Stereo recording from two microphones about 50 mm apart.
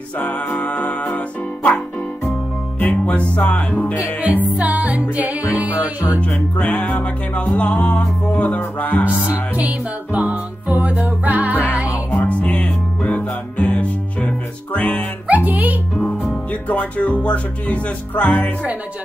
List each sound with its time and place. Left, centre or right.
0.6 s music: left
2.8 s music: left
4.6 s music: right
6.5 s music: left
9.7 s music: right
12.3 s music: left
14.8 s music: centre
15.2 s music: right
16.6 s music: left